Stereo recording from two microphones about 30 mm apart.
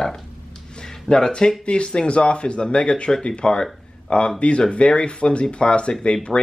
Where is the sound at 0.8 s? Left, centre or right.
Left.